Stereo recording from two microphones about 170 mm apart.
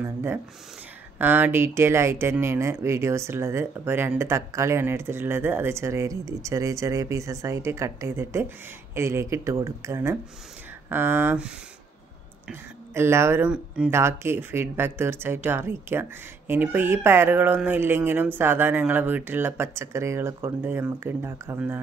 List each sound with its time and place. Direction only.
0.0 s speech: 15° right (ahead or behind)
12.9 s speech: 15° right (ahead or behind)